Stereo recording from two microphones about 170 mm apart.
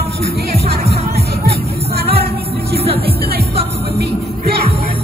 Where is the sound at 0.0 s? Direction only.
70° right (ahead or behind).